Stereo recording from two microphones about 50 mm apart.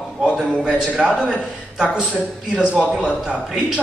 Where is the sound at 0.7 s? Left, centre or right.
Centre.